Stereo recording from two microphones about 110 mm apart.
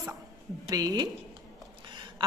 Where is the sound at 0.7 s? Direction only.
35° right (ahead or behind).